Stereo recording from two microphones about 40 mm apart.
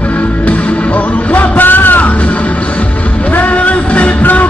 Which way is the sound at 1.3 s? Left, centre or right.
Left.